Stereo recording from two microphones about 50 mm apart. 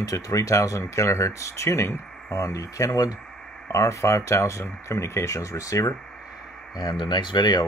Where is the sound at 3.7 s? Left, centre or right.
Left.